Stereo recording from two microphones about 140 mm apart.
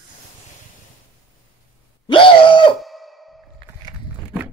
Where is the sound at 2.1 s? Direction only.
40° left (ahead or behind).